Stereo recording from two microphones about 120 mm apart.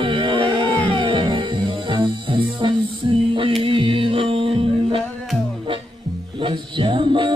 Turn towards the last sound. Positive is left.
turn(degrees=-45)  # may be behind; listen again after turning